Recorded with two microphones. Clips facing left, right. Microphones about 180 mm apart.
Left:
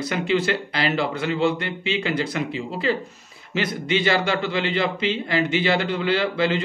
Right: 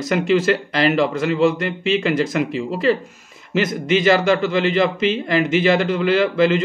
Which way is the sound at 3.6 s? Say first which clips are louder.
Right 5 dB; 45° right (ahead or behind).